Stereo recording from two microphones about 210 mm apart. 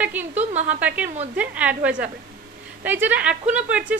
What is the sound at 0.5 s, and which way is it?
Speech, 35° right (ahead or behind).